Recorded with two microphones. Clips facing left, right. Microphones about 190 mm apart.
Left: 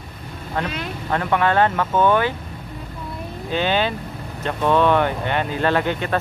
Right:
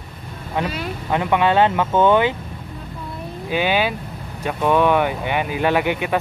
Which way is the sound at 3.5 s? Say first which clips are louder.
Right 1 dB; 10° right (ahead or behind).